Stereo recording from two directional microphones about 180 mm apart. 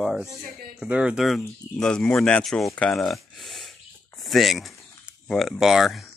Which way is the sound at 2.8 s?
Centre (ahead or behind).